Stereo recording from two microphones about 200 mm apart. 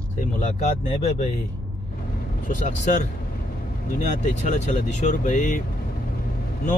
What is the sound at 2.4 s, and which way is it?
Speech, 40° left (ahead or behind).